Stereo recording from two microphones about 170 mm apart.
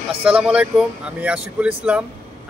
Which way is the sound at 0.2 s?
5° right (ahead or behind).